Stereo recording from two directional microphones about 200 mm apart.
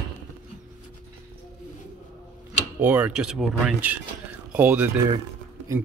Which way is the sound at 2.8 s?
5° right (ahead or behind).